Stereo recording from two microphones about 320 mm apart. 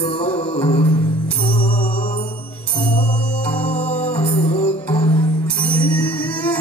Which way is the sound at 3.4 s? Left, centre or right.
Centre.